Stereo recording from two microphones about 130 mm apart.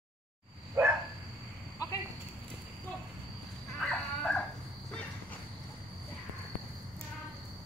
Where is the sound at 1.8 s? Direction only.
25° left (ahead or behind).